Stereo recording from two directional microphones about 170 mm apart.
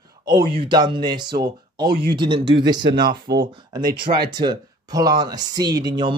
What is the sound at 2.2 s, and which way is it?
Speech, 30° right (ahead or behind).